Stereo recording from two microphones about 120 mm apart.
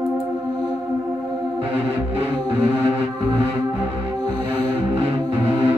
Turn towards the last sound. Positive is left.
turn(degrees=-20)  # may be behind; listen again after turning